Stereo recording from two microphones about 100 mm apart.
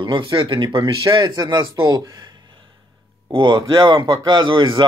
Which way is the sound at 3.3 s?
50° right (ahead or behind).